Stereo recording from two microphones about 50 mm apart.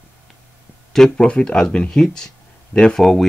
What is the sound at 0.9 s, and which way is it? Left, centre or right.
Speech, centre.